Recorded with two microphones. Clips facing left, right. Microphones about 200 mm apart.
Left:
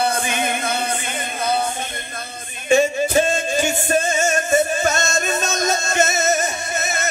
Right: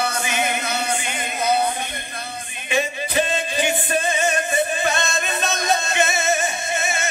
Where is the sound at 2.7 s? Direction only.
45° left (ahead or behind).